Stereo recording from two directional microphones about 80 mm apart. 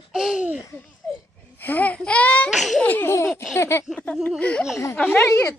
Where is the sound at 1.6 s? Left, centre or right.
Left.